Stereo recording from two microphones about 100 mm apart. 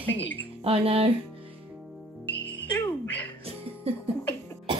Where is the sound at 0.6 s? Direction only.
85° right.